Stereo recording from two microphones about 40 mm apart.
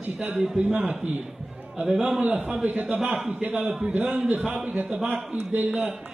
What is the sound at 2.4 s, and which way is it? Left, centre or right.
A man's voice, right.